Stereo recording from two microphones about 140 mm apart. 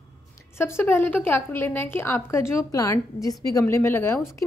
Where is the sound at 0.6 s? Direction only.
15° left (ahead or behind).